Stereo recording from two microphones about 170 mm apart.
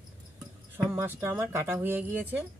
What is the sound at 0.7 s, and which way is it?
Speech, 15° right (ahead or behind).